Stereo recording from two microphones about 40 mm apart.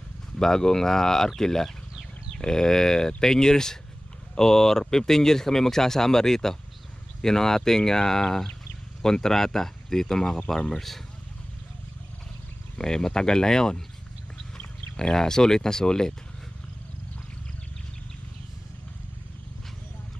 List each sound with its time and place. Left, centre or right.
0.4 s speech: centre
12.7 s speech: centre
15.0 s speech: centre